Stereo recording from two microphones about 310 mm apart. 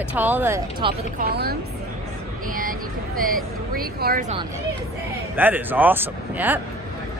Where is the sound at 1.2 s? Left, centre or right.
Right.